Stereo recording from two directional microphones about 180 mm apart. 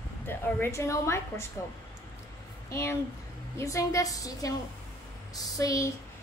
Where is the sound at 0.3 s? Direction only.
15° left (ahead or behind).